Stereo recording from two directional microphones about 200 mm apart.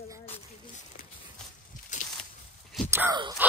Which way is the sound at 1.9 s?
35° left (ahead or behind).